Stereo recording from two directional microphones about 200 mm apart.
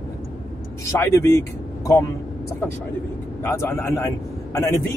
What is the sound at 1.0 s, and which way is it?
Speech, 15° left (ahead or behind).